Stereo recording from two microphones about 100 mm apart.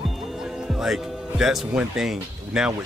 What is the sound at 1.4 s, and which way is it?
Speech, 5° right (ahead or behind).